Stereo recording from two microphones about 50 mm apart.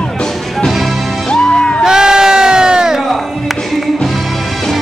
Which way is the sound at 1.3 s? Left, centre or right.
Centre.